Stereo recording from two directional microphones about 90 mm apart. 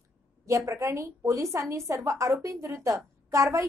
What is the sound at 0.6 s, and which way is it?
A woman's voice, 30° right (ahead or behind).